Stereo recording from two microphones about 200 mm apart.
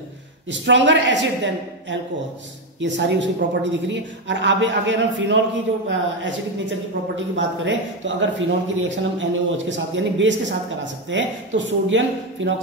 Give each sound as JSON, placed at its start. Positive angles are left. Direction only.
{"t": 0.5, "sound": "a woman's voice", "side_deg": -65}